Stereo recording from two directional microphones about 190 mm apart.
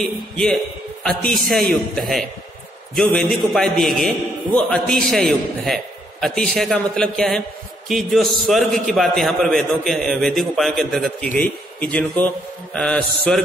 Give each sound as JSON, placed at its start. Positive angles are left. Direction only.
{"t": 0.0, "sound": "a man's voice", "side_deg": 0}